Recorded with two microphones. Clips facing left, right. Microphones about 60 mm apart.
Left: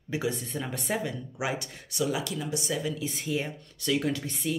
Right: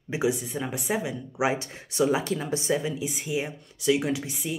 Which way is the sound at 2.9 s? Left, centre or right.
Centre.